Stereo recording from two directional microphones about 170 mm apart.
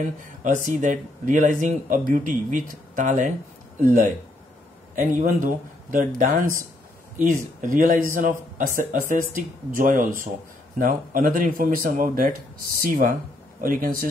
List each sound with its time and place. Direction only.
0.2 s speech: 50° right (ahead or behind)
7.7 s speech: 55° right (ahead or behind)